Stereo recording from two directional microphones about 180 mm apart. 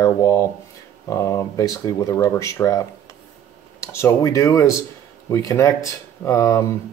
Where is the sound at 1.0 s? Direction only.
15° left (ahead or behind).